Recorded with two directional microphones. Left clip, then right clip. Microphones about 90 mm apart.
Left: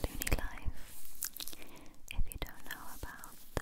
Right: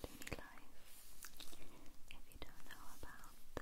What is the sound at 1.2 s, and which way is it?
Whispering, 40° left (ahead or behind).